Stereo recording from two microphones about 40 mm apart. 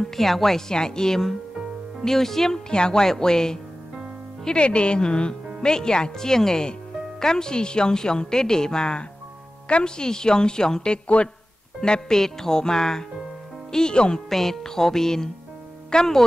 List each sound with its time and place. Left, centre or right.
0.0 s a woman's voice: centre
2.7 s a woman's voice: left
4.6 s a woman's voice: left
14.3 s a woman's voice: centre